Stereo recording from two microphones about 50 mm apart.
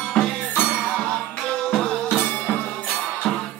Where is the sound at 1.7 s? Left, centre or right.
Centre.